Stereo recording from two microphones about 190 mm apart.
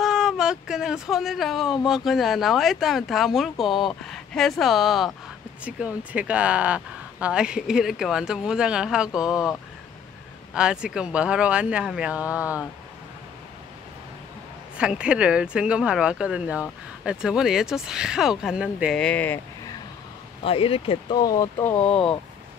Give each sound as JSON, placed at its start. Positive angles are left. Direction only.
{"t": 0.0, "sound": "speech", "side_deg": -5}
{"t": 10.5, "sound": "speech", "side_deg": -5}
{"t": 14.8, "sound": "speech", "side_deg": -5}
{"t": 18.9, "sound": "speech", "side_deg": 5}
{"t": 20.4, "sound": "speech", "side_deg": 30}
{"t": 21.8, "sound": "speech", "side_deg": 30}